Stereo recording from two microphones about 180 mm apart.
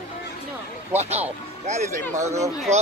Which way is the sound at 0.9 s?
35° right (ahead or behind).